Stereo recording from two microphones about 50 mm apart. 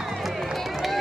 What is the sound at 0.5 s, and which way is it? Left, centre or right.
Run, centre.